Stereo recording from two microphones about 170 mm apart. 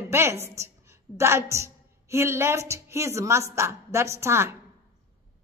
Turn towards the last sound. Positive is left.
turn(degrees=-15)  # may be behind; listen again after turning